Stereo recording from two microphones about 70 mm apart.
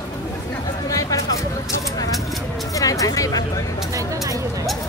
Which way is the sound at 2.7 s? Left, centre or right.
Left.